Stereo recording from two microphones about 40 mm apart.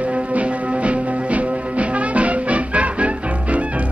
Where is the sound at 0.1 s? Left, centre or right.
Right.